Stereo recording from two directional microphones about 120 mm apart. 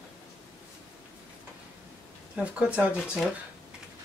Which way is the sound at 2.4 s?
10° right (ahead or behind).